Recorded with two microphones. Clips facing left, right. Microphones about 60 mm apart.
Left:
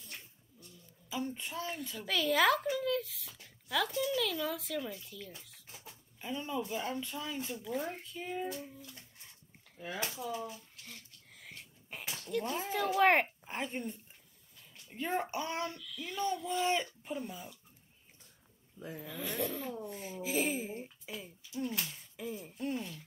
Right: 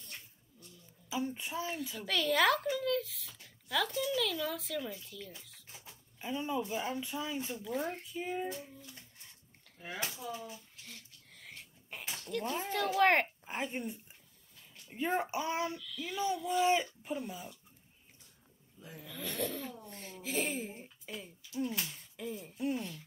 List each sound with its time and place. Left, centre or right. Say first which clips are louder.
1.1 s a child's voice: right 2 dB; centre
5.9 s a sound: right 1 dB; centre
6.7 s speech: right 1 dB; centre
7.6 s speech: even; centre
8.6 s a sound: left 2 dB; centre
10.8 s a sound: left 1 dB; centre
12.3 s a child's voice: left 1 dB; centre
15.8 s a child's voice: even; centre
18.8 s speech: left 6 dB; left
19.0 s a child's voice: left 1 dB; centre